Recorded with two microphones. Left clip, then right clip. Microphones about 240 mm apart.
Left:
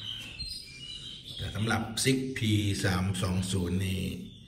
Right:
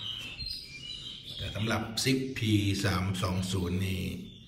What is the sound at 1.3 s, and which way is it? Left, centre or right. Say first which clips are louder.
Speech: left 1 dB; centre.